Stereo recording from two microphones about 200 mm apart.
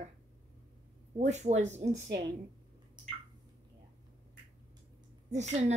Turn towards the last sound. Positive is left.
turn(degrees=-35)  # may be behind; listen again after turning